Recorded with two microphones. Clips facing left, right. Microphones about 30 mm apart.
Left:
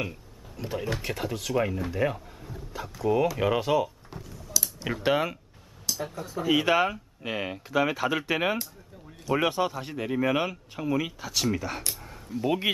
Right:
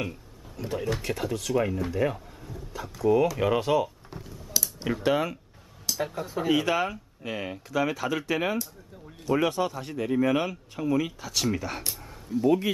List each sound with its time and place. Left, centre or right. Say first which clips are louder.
0.6 s speech: right 1 dB; centre
4.2 s a sound: even; right
5.0 s speech: left 1 dB; centre
6.1 s speech: right 3 dB; centre
6.5 s speech: left 3 dB; centre